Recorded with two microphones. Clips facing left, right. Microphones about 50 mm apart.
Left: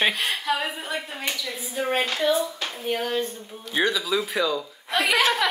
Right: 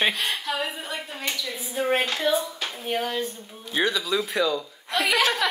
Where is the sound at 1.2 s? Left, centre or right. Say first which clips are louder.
Right 2 dB; centre.